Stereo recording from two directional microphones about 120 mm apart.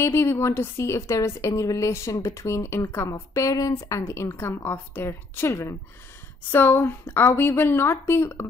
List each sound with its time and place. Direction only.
0.0 s a woman's voice: 20° left (ahead or behind)